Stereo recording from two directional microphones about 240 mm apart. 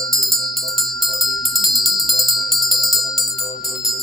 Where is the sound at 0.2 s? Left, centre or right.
Centre.